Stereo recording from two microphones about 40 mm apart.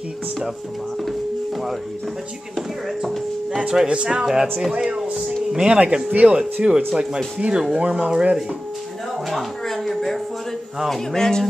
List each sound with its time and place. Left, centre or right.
3.8 s speech: right
6.0 s speech: right
6.3 s speech: centre
9.7 s a sound: centre
10.9 s speech: centre